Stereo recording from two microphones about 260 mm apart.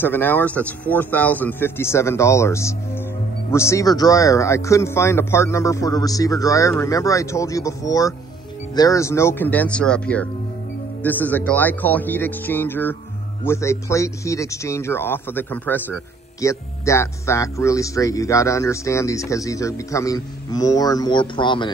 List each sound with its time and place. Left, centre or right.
0.0 s speech: centre